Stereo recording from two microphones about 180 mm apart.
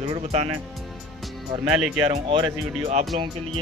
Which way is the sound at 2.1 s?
30° right (ahead or behind).